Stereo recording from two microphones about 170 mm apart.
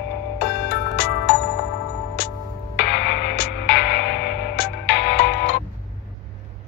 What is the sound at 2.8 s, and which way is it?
Music, 80° left.